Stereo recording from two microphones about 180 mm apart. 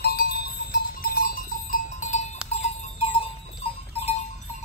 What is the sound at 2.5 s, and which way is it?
Goat, 35° left (ahead or behind).